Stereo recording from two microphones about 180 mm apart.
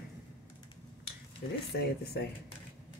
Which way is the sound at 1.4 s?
60° left (ahead or behind).